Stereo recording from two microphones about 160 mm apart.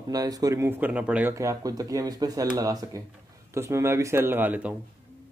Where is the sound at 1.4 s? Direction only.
20° right (ahead or behind).